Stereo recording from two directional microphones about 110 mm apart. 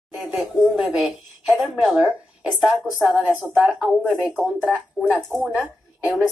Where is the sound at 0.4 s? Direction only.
Centre (ahead or behind).